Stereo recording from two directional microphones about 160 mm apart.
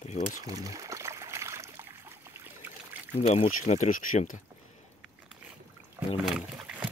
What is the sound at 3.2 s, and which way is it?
Speech, 45° left (ahead or behind).